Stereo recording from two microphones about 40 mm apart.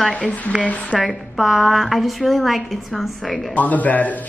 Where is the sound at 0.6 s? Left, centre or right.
Left.